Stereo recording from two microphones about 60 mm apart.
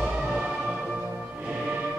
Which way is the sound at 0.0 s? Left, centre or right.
Centre.